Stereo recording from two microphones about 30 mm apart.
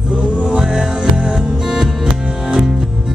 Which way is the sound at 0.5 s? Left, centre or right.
Right.